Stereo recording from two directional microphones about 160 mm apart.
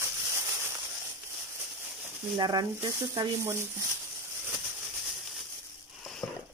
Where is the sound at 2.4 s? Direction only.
25° right (ahead or behind).